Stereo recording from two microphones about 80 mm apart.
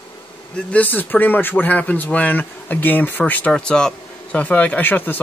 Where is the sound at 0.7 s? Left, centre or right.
Left.